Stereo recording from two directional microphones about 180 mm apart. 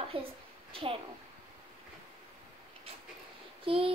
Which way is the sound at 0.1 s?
30° right (ahead or behind).